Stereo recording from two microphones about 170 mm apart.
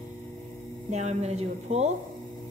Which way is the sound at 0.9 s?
40° right (ahead or behind).